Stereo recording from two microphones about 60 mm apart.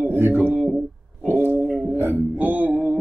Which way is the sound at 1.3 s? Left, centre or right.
Right.